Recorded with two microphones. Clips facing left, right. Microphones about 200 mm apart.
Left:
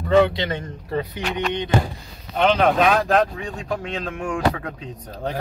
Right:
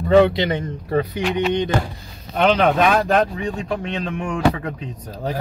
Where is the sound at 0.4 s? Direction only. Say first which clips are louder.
Right 5 dB; 15° right (ahead or behind).